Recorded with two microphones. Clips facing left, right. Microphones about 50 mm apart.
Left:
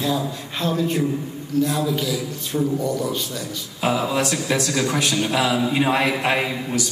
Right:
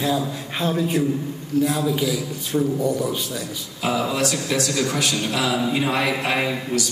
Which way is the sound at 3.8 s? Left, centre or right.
Centre.